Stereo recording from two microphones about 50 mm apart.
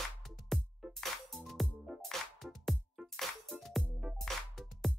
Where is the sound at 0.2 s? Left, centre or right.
Centre.